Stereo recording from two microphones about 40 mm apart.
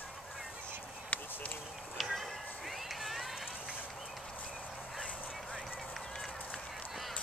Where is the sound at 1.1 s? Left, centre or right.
Left.